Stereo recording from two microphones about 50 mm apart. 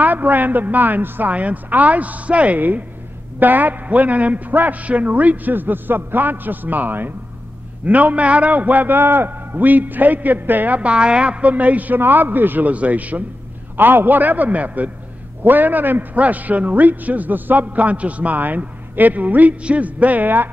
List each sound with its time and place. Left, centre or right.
0.0 s a man's voice: right
1.3 s a man's voice: right
8.9 s a man's voice: right
10.8 s a man's voice: right
13.7 s a man's voice: right